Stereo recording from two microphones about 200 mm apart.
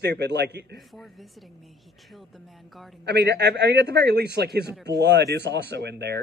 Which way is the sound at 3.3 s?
55° right (ahead or behind).